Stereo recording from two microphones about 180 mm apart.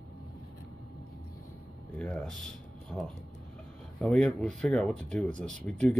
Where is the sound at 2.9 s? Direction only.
20° left (ahead or behind).